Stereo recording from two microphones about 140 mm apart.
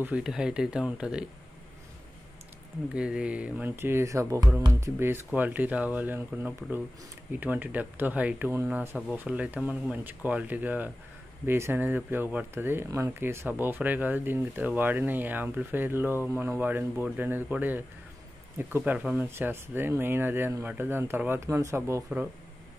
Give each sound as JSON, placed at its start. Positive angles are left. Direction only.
{"t": 0.0, "sound": "speech", "side_deg": -5}
{"t": 2.9, "sound": "speech", "side_deg": -5}